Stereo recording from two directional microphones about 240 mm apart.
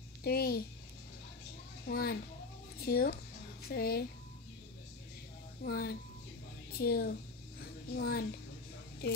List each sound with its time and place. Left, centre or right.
0.2 s a child's voice: left
1.9 s a child's voice: left
5.6 s a child's voice: left